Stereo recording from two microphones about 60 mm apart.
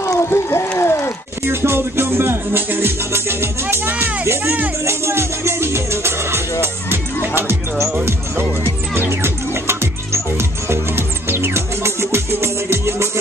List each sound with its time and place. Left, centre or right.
0.0 s ratchet: left
0.7 s a sound: left
1.4 s music: right
4.5 s speech: right
4.8 s music: right